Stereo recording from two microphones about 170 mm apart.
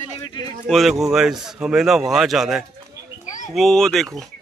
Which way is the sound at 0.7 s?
Centre (ahead or behind).